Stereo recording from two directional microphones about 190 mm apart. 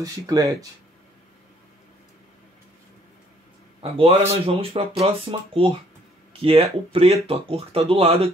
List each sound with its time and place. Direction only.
0.0 s speech: 20° right (ahead or behind)
3.8 s speech: 30° right (ahead or behind)